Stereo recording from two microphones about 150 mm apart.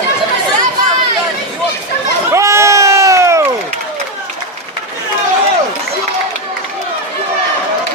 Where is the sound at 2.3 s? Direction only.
20° right (ahead or behind).